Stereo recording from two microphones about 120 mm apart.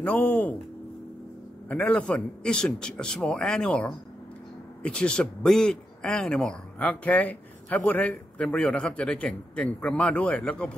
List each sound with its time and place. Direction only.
0.0 s a man's voice: 10° left (ahead or behind)
1.7 s a man's voice: 10° left (ahead or behind)